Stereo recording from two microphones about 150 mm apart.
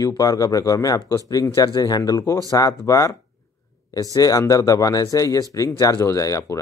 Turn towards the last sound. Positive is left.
turn(degrees=20)  # may be behind; listen again after turning